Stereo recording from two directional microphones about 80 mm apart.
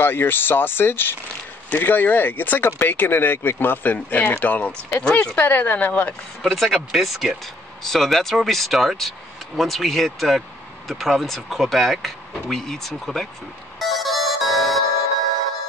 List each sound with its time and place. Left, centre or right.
0.0 s speech: left
6.4 s speech: centre
13.7 s music: centre